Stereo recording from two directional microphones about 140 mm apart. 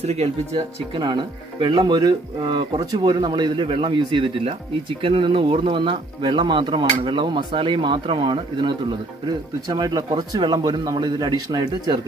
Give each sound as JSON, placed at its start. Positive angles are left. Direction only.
{"t": 0.0, "sound": "speech", "side_deg": -50}
{"t": 0.9, "sound": "speech", "side_deg": -35}